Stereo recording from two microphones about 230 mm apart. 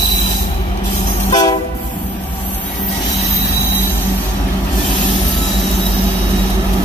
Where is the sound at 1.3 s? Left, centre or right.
Centre.